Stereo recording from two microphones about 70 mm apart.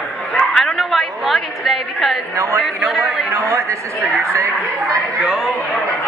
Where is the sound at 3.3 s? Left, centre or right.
Right.